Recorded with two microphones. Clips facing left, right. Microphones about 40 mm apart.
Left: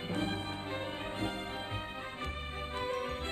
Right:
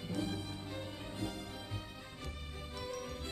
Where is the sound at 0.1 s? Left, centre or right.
Left.